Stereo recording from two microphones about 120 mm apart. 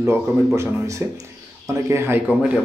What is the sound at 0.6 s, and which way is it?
Speech, 25° right (ahead or behind).